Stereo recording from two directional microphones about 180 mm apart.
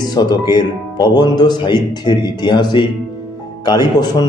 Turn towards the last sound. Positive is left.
turn(degrees=20)  # may be behind; listen again after turning